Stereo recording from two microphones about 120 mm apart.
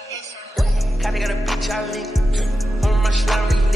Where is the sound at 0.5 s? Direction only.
Centre (ahead or behind).